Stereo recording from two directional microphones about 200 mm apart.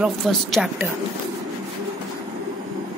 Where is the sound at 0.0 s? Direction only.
Centre (ahead or behind).